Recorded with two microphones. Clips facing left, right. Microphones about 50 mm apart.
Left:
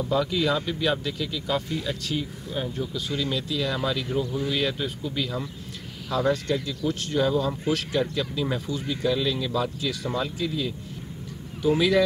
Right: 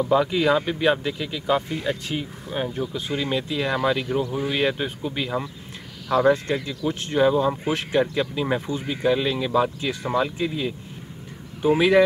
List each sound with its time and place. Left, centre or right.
0.0 s speech: right